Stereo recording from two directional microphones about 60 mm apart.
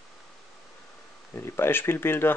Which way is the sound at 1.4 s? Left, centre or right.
Left.